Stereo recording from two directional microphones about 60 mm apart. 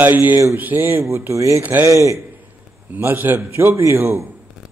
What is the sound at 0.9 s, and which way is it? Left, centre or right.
Speech, right.